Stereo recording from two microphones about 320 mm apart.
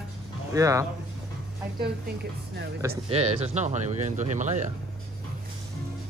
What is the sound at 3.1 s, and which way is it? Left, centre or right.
Speech, centre.